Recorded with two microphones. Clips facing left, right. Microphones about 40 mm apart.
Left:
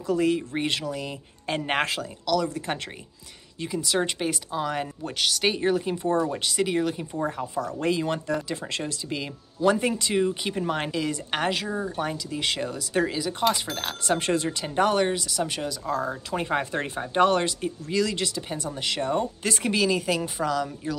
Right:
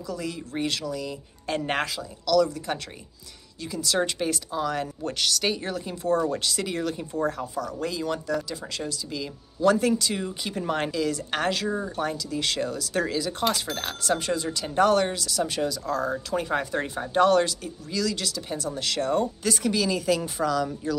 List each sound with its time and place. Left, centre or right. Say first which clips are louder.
0.0 s speech: left 9 dB; left
1.6 s speech: left 3 dB; centre
3.6 s speech: even; centre
6.2 s speech: left 1 dB; centre
7.5 s speech: left 4 dB; left
9.6 s speech: right 1 dB; centre
10.6 s speech: right 2 dB; centre
10.9 s speech: right 1 dB; centre
14.2 s speech: left 3 dB; left
14.6 s speech: right 4 dB; centre
16.3 s speech: left 1 dB; left
18.8 s speech: right 1 dB; centre
19.9 s speech: even; centre